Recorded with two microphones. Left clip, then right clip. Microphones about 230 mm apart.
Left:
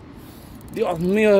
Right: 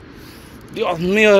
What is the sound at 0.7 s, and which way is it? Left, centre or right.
Speech, left.